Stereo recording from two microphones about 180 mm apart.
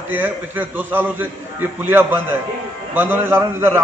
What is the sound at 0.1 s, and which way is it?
A man's voice, 10° right (ahead or behind).